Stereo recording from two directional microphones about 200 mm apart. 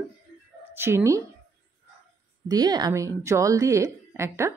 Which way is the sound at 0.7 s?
10° right (ahead or behind).